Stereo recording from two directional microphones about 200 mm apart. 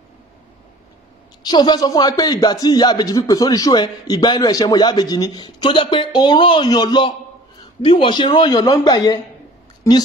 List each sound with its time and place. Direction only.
1.4 s speech: 20° left (ahead or behind)